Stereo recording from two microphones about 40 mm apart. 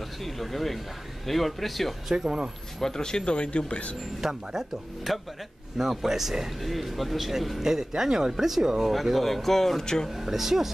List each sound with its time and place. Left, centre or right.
0.2 s speech: centre
2.0 s speech: centre
2.8 s speech: centre
4.2 s speech: centre
10.0 s speech: centre